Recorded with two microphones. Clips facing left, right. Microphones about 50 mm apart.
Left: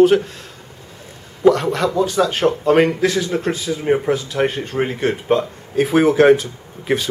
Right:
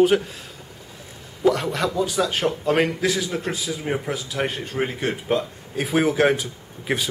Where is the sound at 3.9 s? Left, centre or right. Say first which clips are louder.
Left 10 dB; centre.